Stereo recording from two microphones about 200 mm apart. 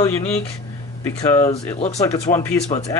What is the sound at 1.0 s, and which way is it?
Speech, 15° left (ahead or behind).